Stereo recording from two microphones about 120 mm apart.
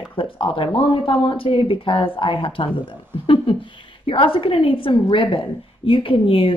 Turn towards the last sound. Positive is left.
turn(degrees=50)  # may be behind; listen again after turning